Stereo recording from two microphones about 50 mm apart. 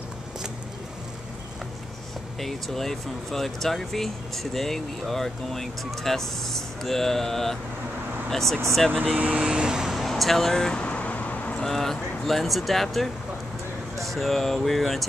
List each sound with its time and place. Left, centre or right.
2.4 s speech: centre
9.0 s speech: right
9.9 s speech: centre
10.7 s vehicle: left
11.5 s speech: centre